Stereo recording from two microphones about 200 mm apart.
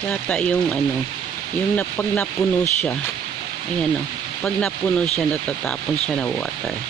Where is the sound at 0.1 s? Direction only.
5° left (ahead or behind).